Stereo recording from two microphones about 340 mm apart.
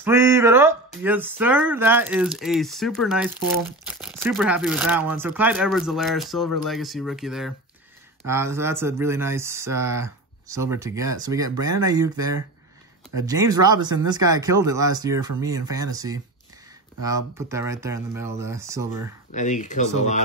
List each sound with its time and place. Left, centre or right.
0.0 s speech: centre
19.3 s speech: left